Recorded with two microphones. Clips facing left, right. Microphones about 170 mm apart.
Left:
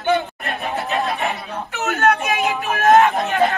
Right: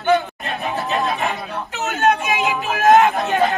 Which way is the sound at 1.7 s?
20° right (ahead or behind).